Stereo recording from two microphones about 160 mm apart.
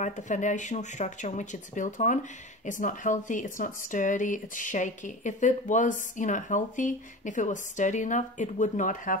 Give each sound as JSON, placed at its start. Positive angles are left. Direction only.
{"t": 0.0, "sound": "a woman's voice", "side_deg": 50}